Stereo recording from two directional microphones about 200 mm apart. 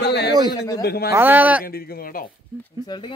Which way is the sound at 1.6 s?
50° left (ahead or behind).